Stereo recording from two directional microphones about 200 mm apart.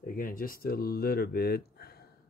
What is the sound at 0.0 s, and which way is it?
Speech, 45° left (ahead or behind).